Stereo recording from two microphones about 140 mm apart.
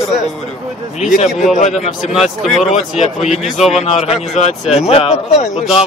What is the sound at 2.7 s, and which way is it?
Speech, 55° left (ahead or behind).